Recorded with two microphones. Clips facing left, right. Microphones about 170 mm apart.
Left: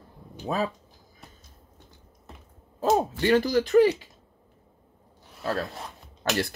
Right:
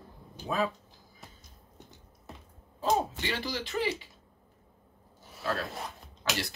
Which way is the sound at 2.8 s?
50° left (ahead or behind).